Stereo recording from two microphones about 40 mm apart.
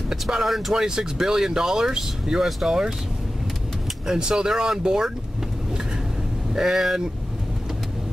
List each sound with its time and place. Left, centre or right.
0.1 s speech: centre
4.1 s speech: centre
6.5 s speech: centre